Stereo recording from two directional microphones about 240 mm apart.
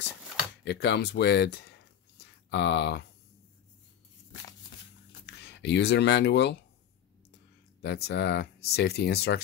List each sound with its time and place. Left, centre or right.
0.7 s speech: left
2.1 s a sound: left
5.2 s speech: left
7.8 s speech: left